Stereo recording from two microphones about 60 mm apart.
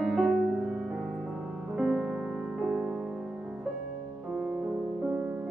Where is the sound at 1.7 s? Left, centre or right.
Centre.